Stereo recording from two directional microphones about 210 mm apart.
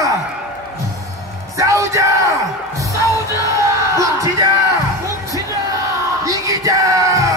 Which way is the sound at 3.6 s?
15° right (ahead or behind).